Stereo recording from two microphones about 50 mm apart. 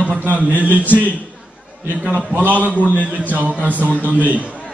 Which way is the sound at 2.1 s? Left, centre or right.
Right.